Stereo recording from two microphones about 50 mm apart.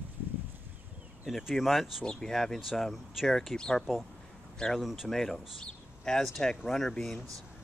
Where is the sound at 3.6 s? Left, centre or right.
Centre.